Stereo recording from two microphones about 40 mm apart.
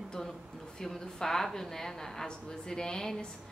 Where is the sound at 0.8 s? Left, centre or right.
Centre.